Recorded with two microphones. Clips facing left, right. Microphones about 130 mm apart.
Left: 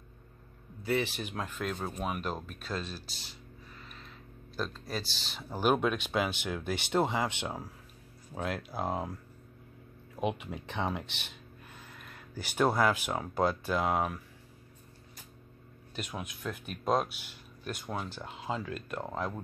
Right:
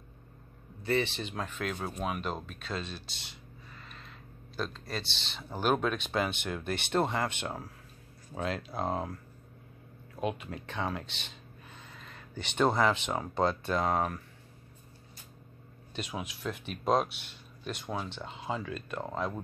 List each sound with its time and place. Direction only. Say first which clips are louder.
0.8 s speech: right 1 dB; 5° left (ahead or behind)
3.7 s a sound: right 1 dB; centre (ahead or behind)
4.6 s speech: even; 5° left (ahead or behind)
10.1 s speech: left 1 dB; 15° left (ahead or behind)
15.9 s speech: right 2 dB; centre (ahead or behind)